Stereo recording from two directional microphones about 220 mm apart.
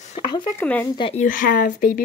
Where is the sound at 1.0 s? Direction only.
25° left (ahead or behind).